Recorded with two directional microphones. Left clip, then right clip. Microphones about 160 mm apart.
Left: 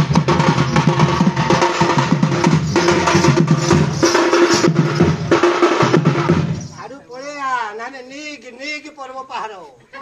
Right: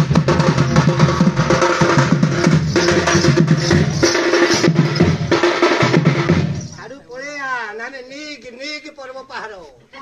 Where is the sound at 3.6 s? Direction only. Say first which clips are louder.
Left 1 dB; 80° left.